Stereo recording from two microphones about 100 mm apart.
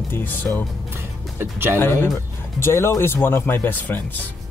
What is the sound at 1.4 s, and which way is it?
Speech, 25° right (ahead or behind).